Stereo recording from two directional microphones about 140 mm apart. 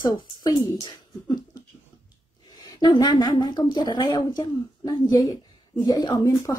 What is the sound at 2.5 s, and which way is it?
A woman's voice, 30° left (ahead or behind).